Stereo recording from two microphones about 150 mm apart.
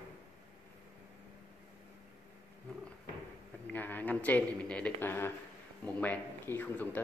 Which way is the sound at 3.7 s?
10° left (ahead or behind).